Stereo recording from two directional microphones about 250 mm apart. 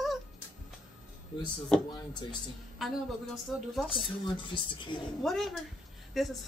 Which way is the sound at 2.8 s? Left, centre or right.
Centre.